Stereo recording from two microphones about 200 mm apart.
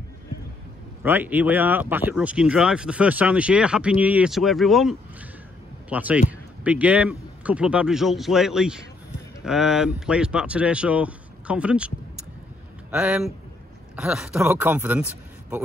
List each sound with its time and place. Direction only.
1.0 s a man's voice: 10° right (ahead or behind)
12.9 s speech: 5° right (ahead or behind)